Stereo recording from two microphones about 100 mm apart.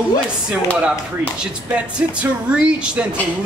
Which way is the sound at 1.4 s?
10° right (ahead or behind).